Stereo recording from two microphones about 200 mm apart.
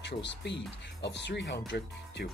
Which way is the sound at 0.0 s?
60° left (ahead or behind).